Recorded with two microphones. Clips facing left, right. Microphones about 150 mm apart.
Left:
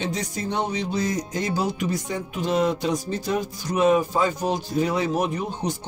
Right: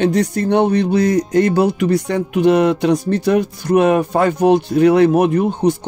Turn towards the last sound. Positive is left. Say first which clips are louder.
# right 12 dB
turn(degrees=-60)  # may be behind; listen again after turning